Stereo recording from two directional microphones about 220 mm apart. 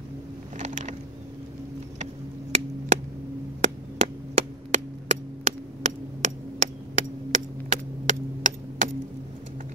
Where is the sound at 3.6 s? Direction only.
30° right (ahead or behind).